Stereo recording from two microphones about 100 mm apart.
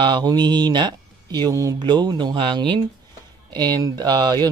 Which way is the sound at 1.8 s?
50° right (ahead or behind).